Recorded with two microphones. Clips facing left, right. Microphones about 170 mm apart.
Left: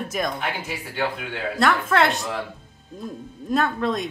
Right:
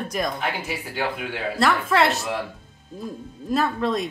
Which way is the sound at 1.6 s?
Centre (ahead or behind).